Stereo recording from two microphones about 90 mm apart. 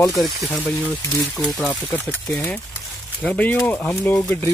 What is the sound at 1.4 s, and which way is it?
Speech, 5° left (ahead or behind).